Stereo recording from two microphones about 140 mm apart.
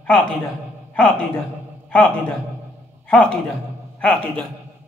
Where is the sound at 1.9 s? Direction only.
10° left (ahead or behind).